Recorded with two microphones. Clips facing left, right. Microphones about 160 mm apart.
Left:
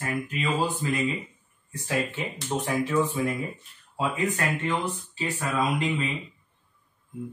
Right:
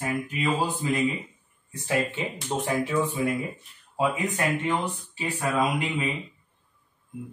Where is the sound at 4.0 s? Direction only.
20° right (ahead or behind).